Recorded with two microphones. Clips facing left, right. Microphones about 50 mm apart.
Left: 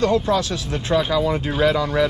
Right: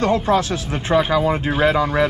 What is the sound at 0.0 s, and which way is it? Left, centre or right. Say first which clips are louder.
Speech: right 1 dB; right.